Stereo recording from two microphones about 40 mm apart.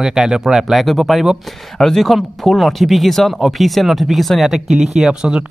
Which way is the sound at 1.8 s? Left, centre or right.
Centre.